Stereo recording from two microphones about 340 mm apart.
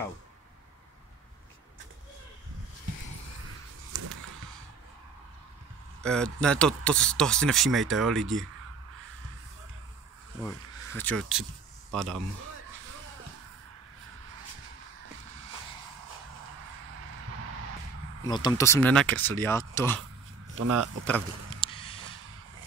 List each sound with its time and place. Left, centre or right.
6.0 s speech: centre
10.4 s speech: centre
18.2 s speech: centre
20.5 s speech: right
21.5 s a sound: centre